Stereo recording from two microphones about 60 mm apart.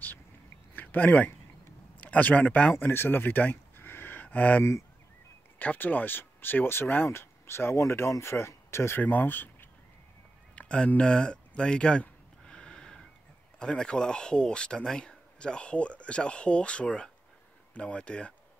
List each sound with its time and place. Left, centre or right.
0.7 s speech: left
2.7 s speech: left
9.0 s speech: left
10.5 s a sound: centre
13.6 s speech: centre